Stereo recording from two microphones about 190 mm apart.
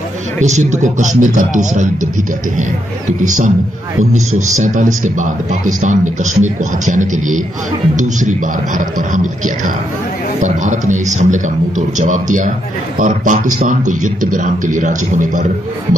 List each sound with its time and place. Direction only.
0.4 s a man's voice: 40° right (ahead or behind)
3.1 s a man's voice: 40° right (ahead or behind)